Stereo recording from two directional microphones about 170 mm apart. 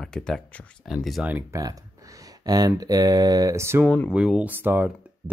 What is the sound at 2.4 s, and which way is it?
Speech, 25° right (ahead or behind).